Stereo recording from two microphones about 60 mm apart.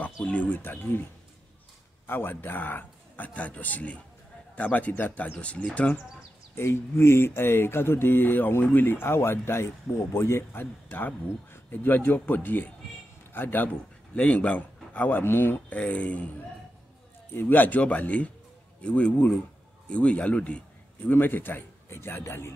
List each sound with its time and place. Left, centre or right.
0.0 s speech: left
2.0 s a man's voice: left
6.5 s a man's voice: left
14.1 s speech: left
15.7 s a man's voice: left
17.3 s a man's voice: left
21.1 s speech: left